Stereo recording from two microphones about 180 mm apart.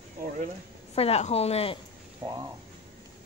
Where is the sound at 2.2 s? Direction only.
25° right (ahead or behind).